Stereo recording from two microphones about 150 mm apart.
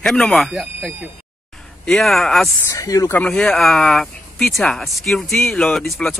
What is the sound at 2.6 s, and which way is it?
Speech, 20° left (ahead or behind).